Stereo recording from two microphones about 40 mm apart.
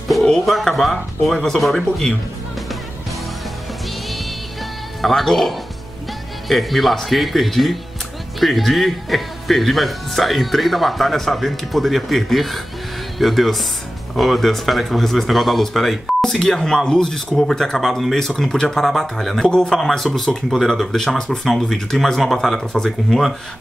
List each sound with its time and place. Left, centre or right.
0.7 s speech: centre
5.0 s speech: centre
19.4 s speech: centre